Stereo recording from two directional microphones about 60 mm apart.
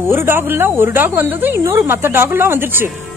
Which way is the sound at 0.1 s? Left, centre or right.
Right.